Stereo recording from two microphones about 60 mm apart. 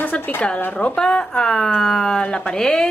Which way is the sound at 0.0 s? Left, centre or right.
Left.